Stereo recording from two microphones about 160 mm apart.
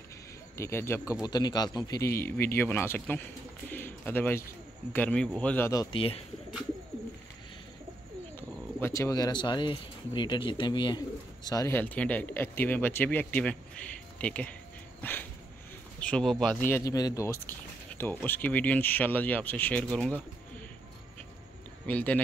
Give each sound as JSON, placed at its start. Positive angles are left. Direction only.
{"t": 0.6, "sound": "speech", "side_deg": 15}
{"t": 1.2, "sound": "speech", "side_deg": 25}
{"t": 5.9, "sound": "speech", "side_deg": 35}
{"t": 8.4, "sound": "speech", "side_deg": 15}
{"t": 15.0, "sound": "dog", "side_deg": 10}
{"t": 16.0, "sound": "speech", "side_deg": 5}
{"t": 16.6, "sound": "speech", "side_deg": 20}
{"t": 21.8, "sound": "speech", "side_deg": 10}